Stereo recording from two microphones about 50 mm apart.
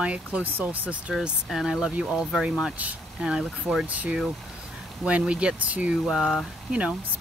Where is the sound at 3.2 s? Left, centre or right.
Centre.